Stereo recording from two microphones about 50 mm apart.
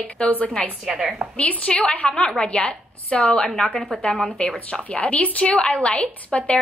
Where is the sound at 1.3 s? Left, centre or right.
Left.